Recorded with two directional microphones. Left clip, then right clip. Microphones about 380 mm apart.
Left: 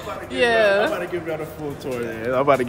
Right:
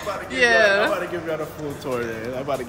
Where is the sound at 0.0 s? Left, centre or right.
Centre.